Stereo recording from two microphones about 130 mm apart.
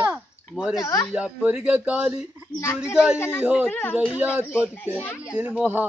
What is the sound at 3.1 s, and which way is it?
Speech, 20° left (ahead or behind).